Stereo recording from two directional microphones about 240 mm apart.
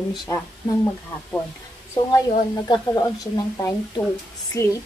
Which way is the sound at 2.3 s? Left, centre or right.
Centre.